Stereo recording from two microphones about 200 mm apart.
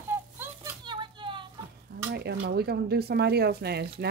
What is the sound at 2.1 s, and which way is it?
Speech, 55° right (ahead or behind).